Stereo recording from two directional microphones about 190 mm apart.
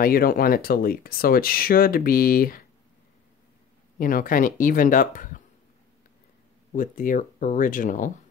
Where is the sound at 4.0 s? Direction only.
45° left (ahead or behind).